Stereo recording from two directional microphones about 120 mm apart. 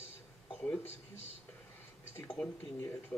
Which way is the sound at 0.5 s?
15° left (ahead or behind).